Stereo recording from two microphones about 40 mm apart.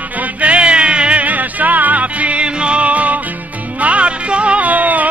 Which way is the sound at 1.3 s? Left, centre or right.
Right.